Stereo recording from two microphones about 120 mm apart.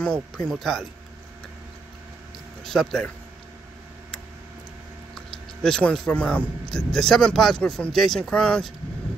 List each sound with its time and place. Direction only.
0.0 s speech: 5° left (ahead or behind)
2.6 s speech: 5° left (ahead or behind)
5.1 s speech: 5° left (ahead or behind)